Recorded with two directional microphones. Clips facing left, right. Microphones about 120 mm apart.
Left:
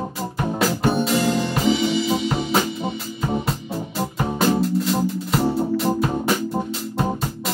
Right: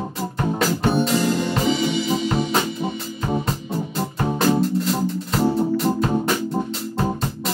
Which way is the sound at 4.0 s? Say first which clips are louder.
Even; centre (ahead or behind).